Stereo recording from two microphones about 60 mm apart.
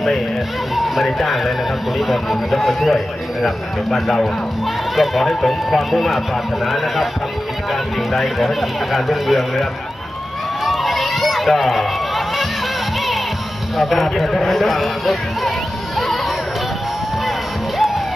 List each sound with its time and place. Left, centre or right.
0.7 s speech: centre
10.6 s run: centre
13.7 s speech: centre